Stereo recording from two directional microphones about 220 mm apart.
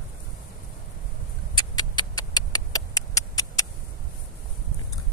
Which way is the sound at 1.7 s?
20° left (ahead or behind).